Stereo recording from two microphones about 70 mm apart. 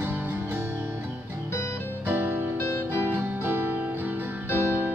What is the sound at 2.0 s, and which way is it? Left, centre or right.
Music, right.